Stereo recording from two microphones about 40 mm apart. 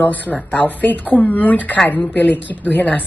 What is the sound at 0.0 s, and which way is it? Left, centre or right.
A woman's voice, left.